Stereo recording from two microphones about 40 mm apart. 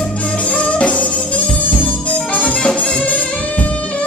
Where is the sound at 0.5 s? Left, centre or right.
Left.